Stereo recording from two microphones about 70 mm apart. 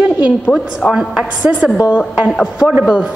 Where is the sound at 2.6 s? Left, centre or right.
Centre.